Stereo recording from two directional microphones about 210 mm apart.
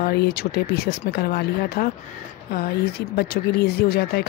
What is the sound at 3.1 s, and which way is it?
Speech, 50° left (ahead or behind).